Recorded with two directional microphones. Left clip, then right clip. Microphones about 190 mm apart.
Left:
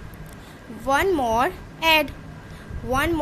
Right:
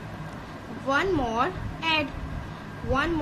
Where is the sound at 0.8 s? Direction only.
50° left (ahead or behind).